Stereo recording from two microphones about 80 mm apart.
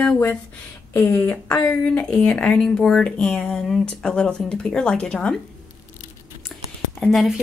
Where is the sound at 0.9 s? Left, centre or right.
Left; by 5.4 s centre.